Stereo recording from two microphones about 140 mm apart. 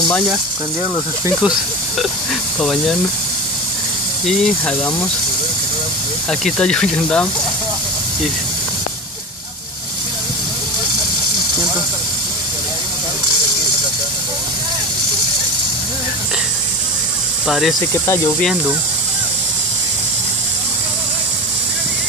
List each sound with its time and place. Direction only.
1.4 s speech: 5° right (ahead or behind)
4.3 s speech: 5° left (ahead or behind)
6.4 s speech: 5° left (ahead or behind)
17.5 s speech: centre (ahead or behind)
17.7 s speech: 20° left (ahead or behind)